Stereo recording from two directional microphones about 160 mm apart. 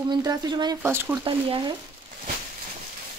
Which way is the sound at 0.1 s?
25° right (ahead or behind).